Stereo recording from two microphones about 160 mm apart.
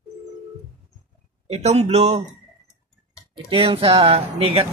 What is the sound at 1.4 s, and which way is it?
Speech, 45° right (ahead or behind).